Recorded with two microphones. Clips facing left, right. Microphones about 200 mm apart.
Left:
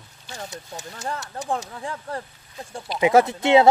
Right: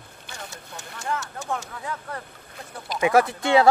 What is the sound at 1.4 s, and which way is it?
Speech, 30° left (ahead or behind).